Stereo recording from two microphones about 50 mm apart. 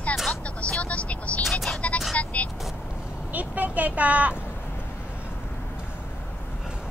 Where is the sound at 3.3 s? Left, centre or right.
Right.